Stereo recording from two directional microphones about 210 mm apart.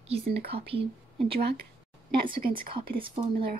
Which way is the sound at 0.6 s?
25° right (ahead or behind).